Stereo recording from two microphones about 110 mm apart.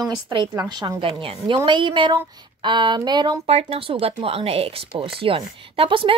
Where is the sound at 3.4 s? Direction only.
70° right (ahead or behind).